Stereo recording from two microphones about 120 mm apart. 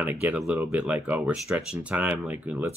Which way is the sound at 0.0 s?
15° right (ahead or behind).